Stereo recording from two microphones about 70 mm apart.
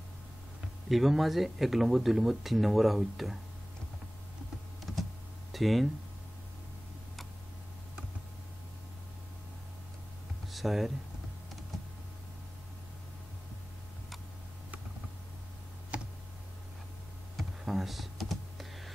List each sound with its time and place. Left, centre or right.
0.8 s speech: centre
4.9 s power windows: centre
5.5 s speech: centre
10.5 s speech: centre
15.9 s tick: centre
17.4 s computer keyboard: centre